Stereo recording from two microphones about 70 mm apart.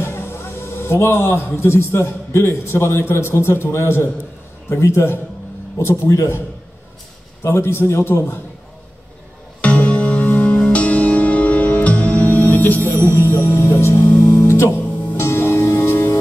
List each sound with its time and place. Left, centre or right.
0.0 s a man's voice: left
7.4 s a man's voice: left
9.6 s music: left
13.1 s music: left